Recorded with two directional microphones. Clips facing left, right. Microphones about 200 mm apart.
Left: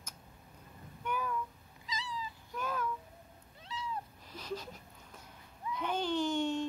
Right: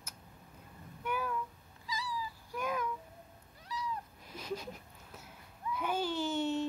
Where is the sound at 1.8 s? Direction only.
20° left (ahead or behind).